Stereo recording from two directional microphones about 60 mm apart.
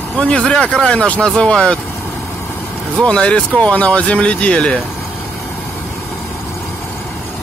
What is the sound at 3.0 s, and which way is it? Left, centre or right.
Speech, centre.